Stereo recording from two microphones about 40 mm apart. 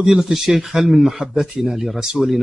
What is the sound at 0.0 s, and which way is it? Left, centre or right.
Speech, centre.